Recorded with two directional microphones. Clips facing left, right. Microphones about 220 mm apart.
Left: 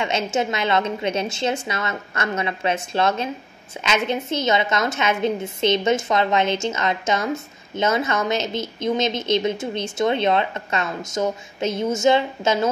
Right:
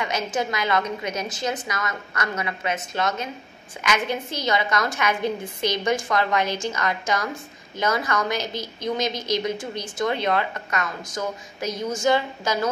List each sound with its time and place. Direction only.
0.0 s a woman's voice: 25° left (ahead or behind)